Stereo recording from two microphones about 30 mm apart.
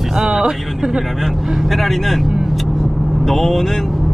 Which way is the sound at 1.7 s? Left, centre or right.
Centre.